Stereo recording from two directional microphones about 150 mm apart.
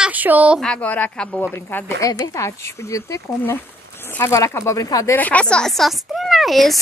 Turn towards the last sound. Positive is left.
turn(degrees=0)  # may be behind; listen again after turning